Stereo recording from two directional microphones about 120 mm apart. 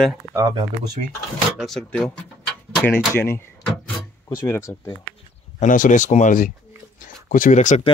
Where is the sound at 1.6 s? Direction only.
5° left (ahead or behind).